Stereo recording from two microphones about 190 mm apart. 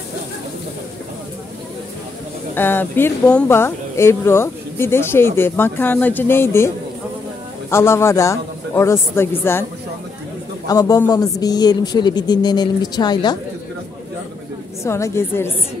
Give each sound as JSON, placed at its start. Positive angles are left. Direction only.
{"t": 2.5, "sound": "speech", "side_deg": 10}
{"t": 7.7, "sound": "speech", "side_deg": 15}
{"t": 10.7, "sound": "speech", "side_deg": 20}
{"t": 14.8, "sound": "speech", "side_deg": 15}